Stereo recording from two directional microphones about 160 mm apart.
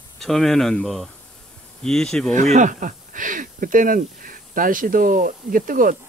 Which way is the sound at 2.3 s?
50° right (ahead or behind).